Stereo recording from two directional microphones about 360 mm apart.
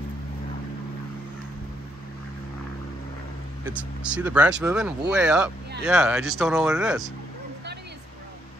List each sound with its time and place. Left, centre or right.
3.6 s speech: centre